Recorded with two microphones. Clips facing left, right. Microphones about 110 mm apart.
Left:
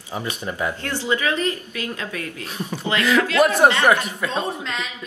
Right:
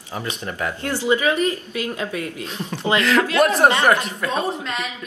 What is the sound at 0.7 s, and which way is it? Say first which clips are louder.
Speech: right 3 dB; 15° right (ahead or behind).